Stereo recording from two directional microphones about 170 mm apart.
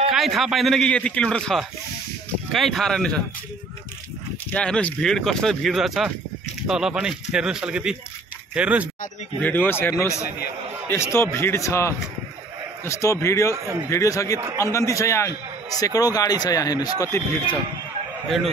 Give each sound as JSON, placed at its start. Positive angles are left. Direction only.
{"t": 0.1, "sound": "speech", "side_deg": 0}
{"t": 4.5, "sound": "speech", "side_deg": 5}
{"t": 9.4, "sound": "a man's voice", "side_deg": 10}